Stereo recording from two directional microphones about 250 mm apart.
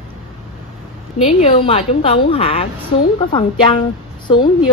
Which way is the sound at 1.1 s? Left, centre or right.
Left.